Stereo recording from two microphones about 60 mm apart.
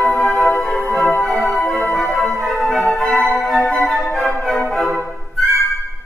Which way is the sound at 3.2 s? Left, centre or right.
Left.